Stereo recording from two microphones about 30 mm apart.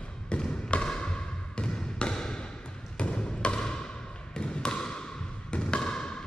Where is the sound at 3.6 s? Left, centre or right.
Left.